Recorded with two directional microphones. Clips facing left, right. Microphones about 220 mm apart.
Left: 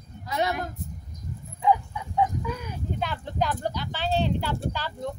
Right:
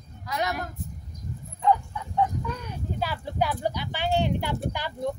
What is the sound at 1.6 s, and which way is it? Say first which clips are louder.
Livestock: even; 10° left (ahead or behind).